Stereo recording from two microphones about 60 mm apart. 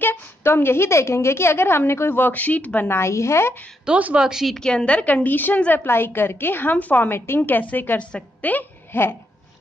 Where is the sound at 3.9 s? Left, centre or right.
Right.